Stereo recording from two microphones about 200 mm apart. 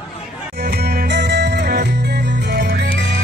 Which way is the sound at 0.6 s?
50° right (ahead or behind).